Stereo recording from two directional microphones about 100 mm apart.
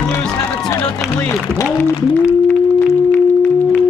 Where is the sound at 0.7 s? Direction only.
30° left (ahead or behind).